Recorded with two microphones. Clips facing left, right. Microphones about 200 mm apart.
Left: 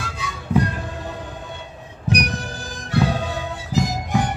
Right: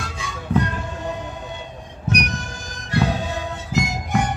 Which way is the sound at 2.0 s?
35° left (ahead or behind).